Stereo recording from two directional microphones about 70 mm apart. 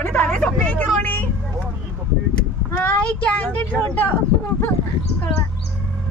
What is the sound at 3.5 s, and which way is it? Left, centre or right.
Speech, left.